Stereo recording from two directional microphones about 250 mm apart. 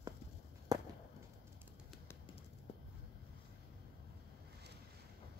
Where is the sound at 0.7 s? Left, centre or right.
Centre.